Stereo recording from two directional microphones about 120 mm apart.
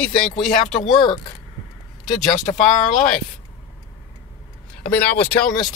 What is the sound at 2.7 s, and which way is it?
Speech, 90° left.